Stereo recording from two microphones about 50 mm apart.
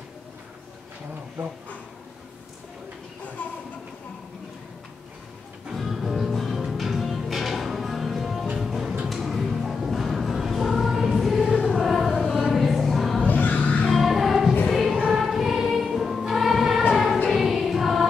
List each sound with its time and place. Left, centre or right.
3.4 s a sound: left
5.7 s music: centre
11.6 s choir: centre
13.3 s music: left
13.8 s music: centre
14.7 s choir: centre
16.9 s music: centre
17.3 s choir: centre